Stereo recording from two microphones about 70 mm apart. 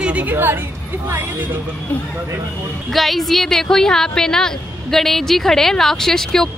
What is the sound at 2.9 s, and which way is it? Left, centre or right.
A woman's voice, centre.